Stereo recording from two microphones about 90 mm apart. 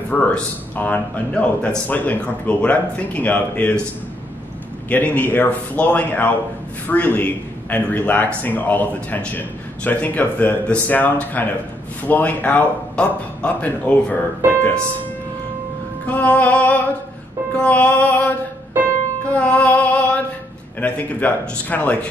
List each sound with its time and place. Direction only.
0.1 s speech: 20° left (ahead or behind)
4.8 s speech: 15° left (ahead or behind)
16.1 s music: 15° left (ahead or behind)
18.8 s music: 20° right (ahead or behind)
19.2 s music: 15° left (ahead or behind)
20.8 s speech: 20° left (ahead or behind)